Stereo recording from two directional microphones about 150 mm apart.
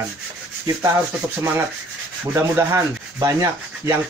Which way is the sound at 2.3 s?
15° right (ahead or behind).